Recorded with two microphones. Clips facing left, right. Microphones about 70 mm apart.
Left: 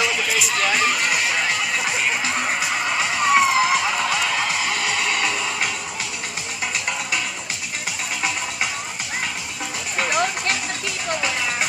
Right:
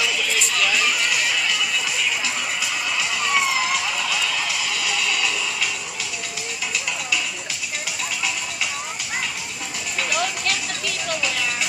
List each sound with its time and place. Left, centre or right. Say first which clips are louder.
0.6 s music: left 1 dB; left
9.9 s music: left 3 dB; left